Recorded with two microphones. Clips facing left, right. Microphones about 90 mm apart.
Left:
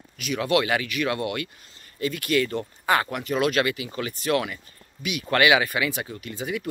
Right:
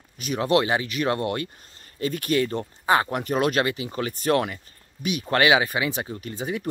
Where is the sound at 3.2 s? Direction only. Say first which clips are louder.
Right 1 dB; 40° right (ahead or behind).